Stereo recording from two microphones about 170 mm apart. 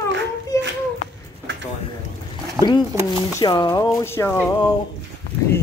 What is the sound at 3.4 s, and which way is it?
Speech, 20° left (ahead or behind).